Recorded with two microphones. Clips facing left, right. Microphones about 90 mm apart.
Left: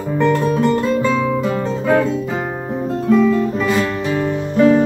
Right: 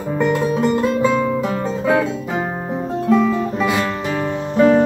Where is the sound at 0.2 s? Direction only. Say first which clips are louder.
Left 2 dB; 5° right (ahead or behind).